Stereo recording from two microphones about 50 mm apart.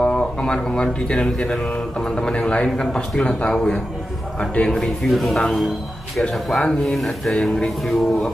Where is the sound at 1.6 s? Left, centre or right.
Centre.